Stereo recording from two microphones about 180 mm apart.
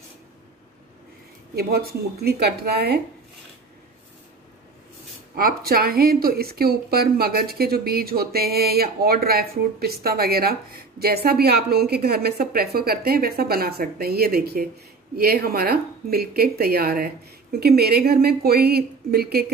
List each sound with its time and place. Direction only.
1.5 s speech: 60° right (ahead or behind)
5.3 s speech: 55° right (ahead or behind)